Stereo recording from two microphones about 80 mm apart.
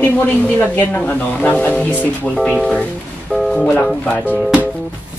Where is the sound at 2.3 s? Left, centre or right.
Centre.